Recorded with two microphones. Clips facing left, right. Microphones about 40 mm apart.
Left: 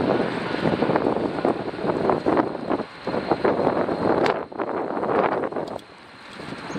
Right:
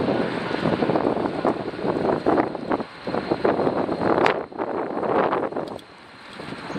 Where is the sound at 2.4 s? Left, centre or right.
Centre.